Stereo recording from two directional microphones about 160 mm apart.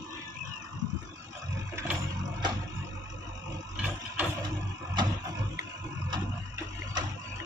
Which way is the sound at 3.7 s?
10° right (ahead or behind).